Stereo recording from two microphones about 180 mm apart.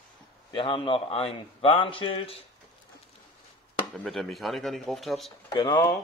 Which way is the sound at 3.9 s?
Centre (ahead or behind).